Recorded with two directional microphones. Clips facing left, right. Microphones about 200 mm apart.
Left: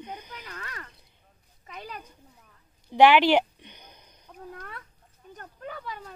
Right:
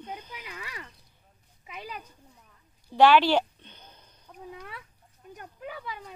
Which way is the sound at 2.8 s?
15° left (ahead or behind).